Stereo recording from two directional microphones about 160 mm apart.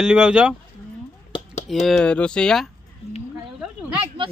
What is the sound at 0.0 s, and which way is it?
Speech, 5° right (ahead or behind).